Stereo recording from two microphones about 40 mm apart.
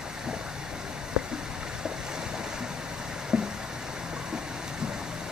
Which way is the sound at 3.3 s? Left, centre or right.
Centre.